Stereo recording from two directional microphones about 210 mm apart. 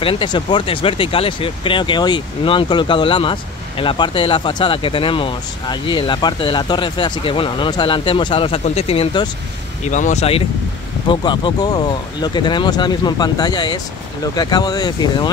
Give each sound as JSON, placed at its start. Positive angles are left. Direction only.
{"t": 0.0, "sound": "speech", "side_deg": 25}
{"t": 9.8, "sound": "speech", "side_deg": 35}